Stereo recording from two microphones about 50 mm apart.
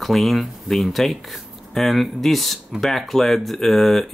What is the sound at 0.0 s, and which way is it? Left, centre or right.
Speech, centre.